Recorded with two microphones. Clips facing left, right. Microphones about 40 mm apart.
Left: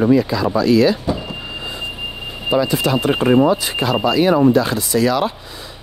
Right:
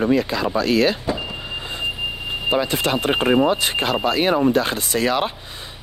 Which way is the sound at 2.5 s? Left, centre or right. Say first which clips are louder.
Left 4 dB; right.